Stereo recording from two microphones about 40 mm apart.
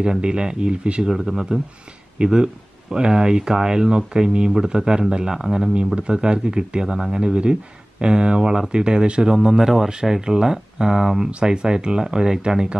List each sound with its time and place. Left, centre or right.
0.0 s speech: right
1.0 s speech: centre
2.1 s speech: right